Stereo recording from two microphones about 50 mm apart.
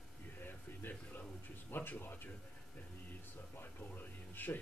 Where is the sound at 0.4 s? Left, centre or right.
Left.